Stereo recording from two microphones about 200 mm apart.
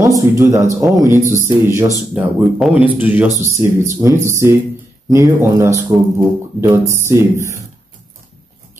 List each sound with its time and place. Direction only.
0.0 s speech: 15° right (ahead or behind)